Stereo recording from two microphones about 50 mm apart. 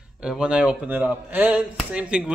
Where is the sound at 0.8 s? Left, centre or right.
Right.